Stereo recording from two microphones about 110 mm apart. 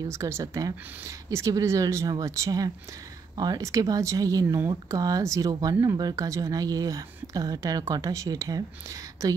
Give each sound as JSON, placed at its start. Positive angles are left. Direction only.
{"t": 0.1, "sound": "speech", "side_deg": -25}